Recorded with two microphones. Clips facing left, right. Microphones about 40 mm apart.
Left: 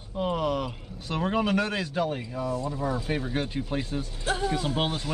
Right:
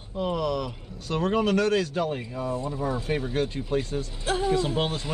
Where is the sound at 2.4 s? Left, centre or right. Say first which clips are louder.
Even; right.